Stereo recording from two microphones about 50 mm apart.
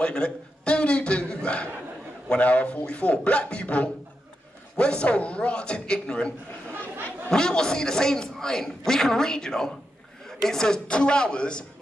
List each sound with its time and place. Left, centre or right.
0.0 s a man's voice: left